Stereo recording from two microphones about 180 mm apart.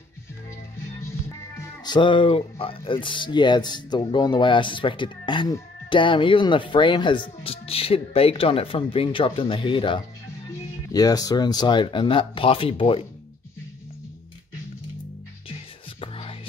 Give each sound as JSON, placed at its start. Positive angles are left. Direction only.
{"t": 1.6, "sound": "speech", "side_deg": 25}
{"t": 16.0, "sound": "music", "side_deg": 30}